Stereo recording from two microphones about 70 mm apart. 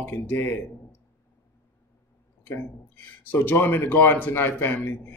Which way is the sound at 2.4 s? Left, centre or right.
Left.